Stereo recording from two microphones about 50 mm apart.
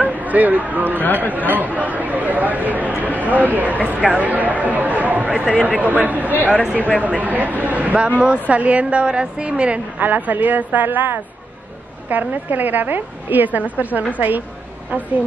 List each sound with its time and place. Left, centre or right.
0.0 s a woman's voice: right
5.5 s a man's voice: left
5.8 s a woman's voice: right
9.9 s a woman's voice: right